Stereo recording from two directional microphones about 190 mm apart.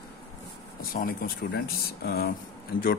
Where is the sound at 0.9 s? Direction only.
50° left (ahead or behind).